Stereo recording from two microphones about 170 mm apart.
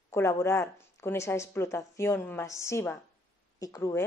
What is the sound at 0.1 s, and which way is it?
A woman's voice, 15° left (ahead or behind).